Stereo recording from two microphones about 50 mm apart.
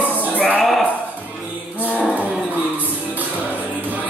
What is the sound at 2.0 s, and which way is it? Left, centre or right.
Music, left.